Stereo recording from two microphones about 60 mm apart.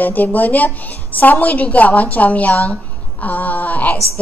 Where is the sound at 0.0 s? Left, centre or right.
Left.